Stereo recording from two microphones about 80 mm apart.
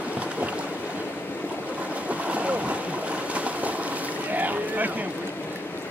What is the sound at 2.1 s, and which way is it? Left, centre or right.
Boat, centre.